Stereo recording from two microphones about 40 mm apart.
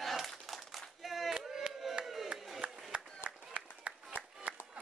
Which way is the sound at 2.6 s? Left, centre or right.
Right.